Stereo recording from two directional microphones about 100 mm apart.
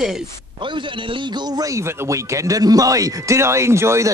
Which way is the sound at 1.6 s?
30° right (ahead or behind).